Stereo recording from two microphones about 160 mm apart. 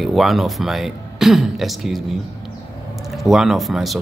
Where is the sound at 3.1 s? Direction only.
Centre (ahead or behind).